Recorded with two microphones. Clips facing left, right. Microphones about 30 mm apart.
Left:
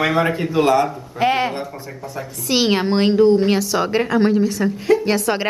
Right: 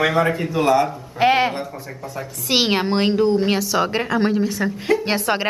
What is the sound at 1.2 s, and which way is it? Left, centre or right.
Speech, centre.